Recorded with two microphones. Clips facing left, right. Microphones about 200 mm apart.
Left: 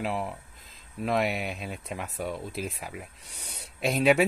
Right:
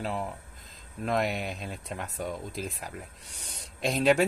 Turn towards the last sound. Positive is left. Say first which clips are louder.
# left 1 dB
turn(degrees=5)  # may be behind; listen again after turning